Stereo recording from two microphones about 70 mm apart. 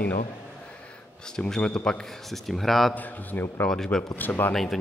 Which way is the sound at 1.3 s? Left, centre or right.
Centre.